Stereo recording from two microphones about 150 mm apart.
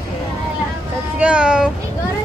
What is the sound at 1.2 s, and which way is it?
Speech, 5° right (ahead or behind).